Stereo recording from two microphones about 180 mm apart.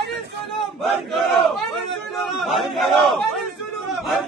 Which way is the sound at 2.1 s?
Centre (ahead or behind).